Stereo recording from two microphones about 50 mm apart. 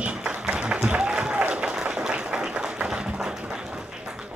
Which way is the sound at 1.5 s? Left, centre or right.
Centre.